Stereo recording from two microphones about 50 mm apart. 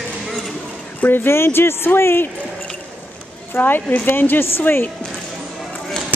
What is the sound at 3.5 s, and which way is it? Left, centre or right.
Speech, left.